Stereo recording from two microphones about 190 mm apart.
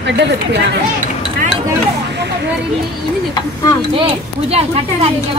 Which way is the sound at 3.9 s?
30° right (ahead or behind).